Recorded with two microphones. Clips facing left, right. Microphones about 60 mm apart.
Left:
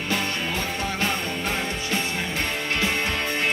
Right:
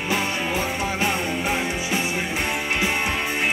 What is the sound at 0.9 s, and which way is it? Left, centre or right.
Music, centre.